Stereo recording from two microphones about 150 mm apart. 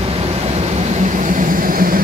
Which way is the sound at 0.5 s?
50° right (ahead or behind).